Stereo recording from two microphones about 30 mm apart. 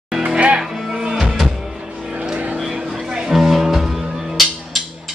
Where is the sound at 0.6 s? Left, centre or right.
Right.